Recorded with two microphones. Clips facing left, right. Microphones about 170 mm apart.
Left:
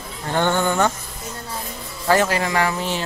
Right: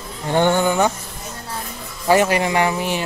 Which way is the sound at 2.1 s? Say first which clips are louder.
Right 3 dB; 15° right (ahead or behind).